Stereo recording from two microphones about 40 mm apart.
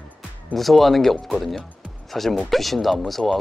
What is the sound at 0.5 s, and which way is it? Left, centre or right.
Speech, centre.